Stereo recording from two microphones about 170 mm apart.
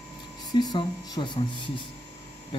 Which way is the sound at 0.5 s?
25° left (ahead or behind).